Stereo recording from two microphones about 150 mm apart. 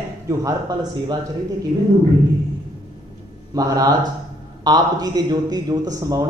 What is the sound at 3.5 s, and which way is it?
Speech, 25° right (ahead or behind).